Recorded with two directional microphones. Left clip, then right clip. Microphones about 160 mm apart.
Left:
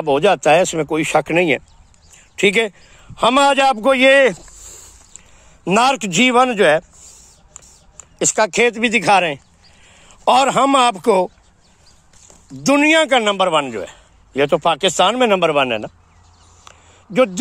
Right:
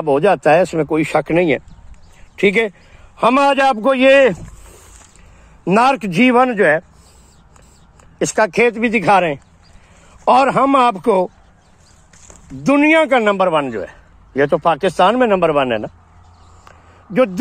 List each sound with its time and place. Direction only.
0.0 s a man's voice: 15° left (ahead or behind)
5.6 s a man's voice: 25° left (ahead or behind)
16.6 s a sound: 15° left (ahead or behind)